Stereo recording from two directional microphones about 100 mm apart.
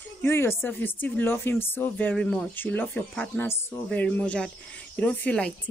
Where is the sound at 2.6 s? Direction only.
20° left (ahead or behind).